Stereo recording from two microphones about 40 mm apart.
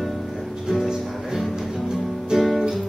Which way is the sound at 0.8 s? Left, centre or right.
Centre.